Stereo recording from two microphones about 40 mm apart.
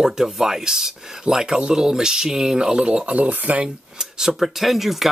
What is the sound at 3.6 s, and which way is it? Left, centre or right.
Speech, centre.